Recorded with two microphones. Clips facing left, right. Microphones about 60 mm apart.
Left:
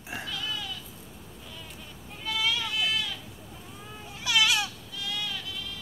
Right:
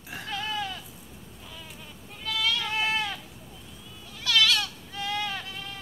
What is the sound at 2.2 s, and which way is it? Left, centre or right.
Sheep, centre.